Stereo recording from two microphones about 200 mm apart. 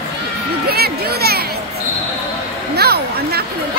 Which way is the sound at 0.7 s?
50° right (ahead or behind).